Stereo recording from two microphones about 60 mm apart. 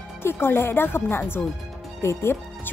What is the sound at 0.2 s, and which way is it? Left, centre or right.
Speech, left.